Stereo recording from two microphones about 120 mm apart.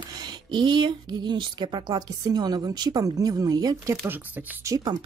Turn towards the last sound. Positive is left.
turn(degrees=-35)  # may be behind; listen again after turning